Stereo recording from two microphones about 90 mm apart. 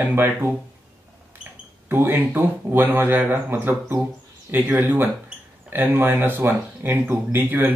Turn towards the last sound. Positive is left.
turn(degrees=-20)  # may be behind; listen again after turning